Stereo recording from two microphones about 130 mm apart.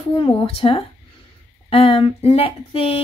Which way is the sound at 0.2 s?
40° left (ahead or behind).